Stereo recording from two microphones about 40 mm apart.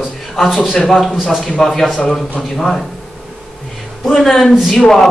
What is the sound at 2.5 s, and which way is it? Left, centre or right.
Speech, centre.